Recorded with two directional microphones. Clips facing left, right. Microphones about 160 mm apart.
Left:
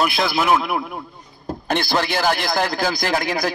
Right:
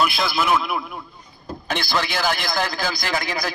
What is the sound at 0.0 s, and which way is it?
A man's voice, 55° left (ahead or behind).